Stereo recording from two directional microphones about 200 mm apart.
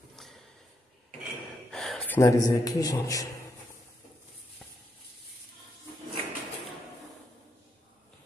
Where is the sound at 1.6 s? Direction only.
Centre (ahead or behind).